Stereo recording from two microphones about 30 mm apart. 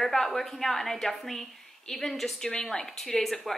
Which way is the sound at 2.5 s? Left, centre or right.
Left.